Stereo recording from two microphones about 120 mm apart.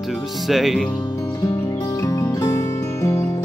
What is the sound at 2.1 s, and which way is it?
Music, 25° left (ahead or behind).